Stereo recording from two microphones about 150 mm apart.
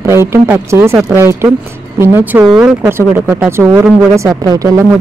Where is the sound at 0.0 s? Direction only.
15° right (ahead or behind).